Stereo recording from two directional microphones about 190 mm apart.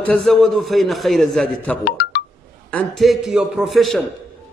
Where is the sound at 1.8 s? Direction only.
55° left (ahead or behind).